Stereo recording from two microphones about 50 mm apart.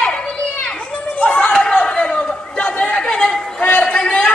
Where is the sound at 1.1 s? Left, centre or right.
Left.